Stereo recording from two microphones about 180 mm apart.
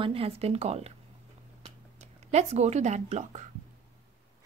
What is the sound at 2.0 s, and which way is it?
Speech, 40° right (ahead or behind).